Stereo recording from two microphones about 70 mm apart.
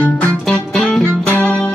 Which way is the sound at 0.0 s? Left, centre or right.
Centre.